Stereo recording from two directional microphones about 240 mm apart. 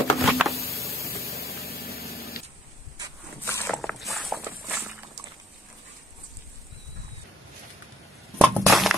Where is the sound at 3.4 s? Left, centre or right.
Centre.